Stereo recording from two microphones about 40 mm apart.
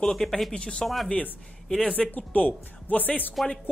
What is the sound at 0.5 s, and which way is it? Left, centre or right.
Speech, left.